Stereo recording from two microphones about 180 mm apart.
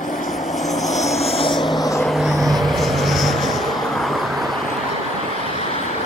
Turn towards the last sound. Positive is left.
turn(degrees=0)  # may be behind; listen again after turning